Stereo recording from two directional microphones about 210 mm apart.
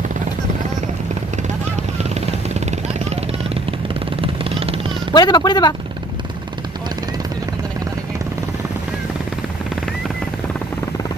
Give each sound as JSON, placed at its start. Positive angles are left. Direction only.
{"t": 1.8, "sound": "vehicle", "side_deg": -30}
{"t": 5.1, "sound": "speech", "side_deg": 20}